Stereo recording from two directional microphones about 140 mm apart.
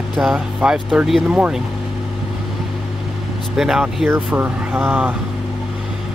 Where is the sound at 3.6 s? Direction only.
5° right (ahead or behind).